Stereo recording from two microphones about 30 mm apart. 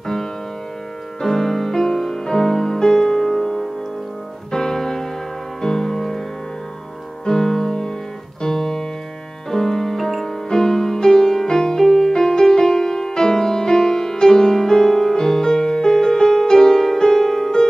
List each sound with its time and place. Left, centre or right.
1.2 s music: centre
7.2 s music: centre